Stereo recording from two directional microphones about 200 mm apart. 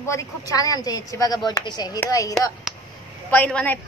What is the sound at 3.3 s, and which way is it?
Speech, 5° left (ahead or behind).